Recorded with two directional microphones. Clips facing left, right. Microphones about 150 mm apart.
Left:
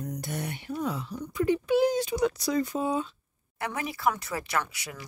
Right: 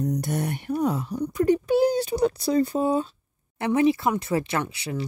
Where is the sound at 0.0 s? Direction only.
40° right (ahead or behind).